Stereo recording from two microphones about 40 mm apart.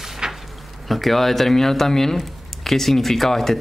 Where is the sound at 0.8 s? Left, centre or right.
Centre.